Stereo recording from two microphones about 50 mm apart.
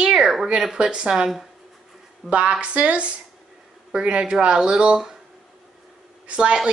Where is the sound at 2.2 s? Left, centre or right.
Right.